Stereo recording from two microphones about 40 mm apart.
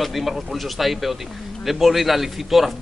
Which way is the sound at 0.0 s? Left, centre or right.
Centre.